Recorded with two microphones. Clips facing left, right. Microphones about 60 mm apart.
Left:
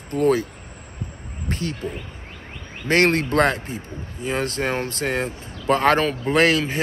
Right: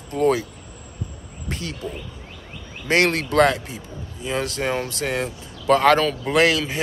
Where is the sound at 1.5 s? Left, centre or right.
Left.